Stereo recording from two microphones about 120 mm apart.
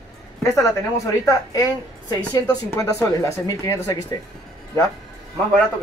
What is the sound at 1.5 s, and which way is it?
Speech, 35° left (ahead or behind).